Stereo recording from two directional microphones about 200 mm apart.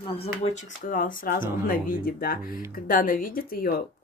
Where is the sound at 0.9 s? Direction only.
40° left (ahead or behind).